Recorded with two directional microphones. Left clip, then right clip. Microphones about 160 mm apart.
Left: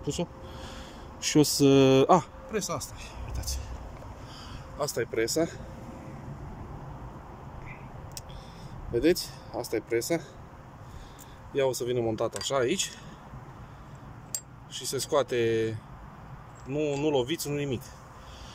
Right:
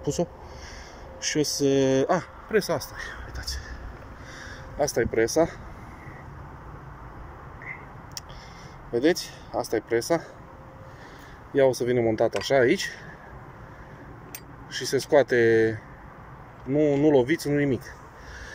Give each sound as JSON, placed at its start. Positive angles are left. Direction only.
{"t": 0.0, "sound": "speech", "side_deg": 10}
{"t": 1.2, "sound": "speech", "side_deg": 30}
{"t": 2.5, "sound": "speech", "side_deg": -5}
{"t": 4.4, "sound": "speech", "side_deg": 5}
{"t": 8.9, "sound": "speech", "side_deg": 5}
{"t": 11.5, "sound": "speech", "side_deg": 5}
{"t": 14.7, "sound": "speech", "side_deg": 5}
{"t": 17.0, "sound": "speech", "side_deg": 10}